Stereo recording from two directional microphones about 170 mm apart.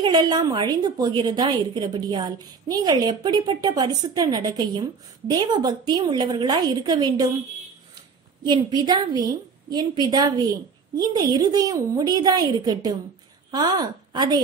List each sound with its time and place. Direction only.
0.0 s a woman's voice: 25° right (ahead or behind)
8.5 s a woman's voice: 25° right (ahead or behind)